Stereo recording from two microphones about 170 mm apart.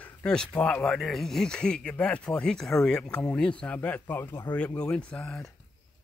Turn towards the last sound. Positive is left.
turn(degrees=5)  # may be behind; listen again after turning